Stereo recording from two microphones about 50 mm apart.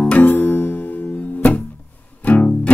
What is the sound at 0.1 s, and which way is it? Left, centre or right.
Music, left.